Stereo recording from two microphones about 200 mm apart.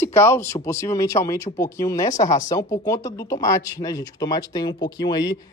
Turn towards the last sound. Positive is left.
turn(degrees=20)  # may be behind; listen again after turning